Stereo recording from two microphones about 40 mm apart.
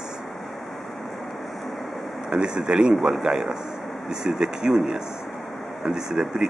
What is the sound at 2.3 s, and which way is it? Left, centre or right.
Speech, right.